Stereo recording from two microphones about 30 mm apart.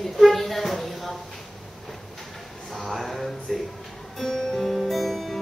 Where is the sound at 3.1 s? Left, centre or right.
Centre.